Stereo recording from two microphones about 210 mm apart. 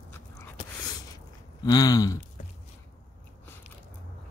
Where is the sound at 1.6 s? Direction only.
20° left (ahead or behind).